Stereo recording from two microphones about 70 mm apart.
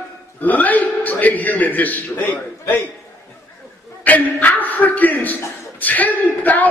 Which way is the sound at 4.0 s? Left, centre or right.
Left.